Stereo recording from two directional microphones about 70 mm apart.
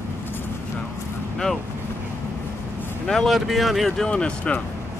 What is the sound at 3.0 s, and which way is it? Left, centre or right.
Speech, centre.